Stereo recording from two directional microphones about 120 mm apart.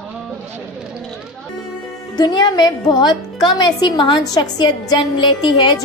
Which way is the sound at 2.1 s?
35° left (ahead or behind).